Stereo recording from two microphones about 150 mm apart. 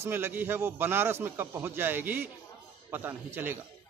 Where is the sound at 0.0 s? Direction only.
15° right (ahead or behind).